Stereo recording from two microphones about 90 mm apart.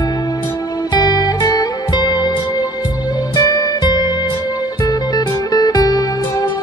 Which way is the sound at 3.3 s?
45° left (ahead or behind).